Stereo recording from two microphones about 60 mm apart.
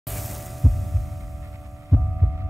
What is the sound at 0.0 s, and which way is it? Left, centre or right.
Heart sounds, centre.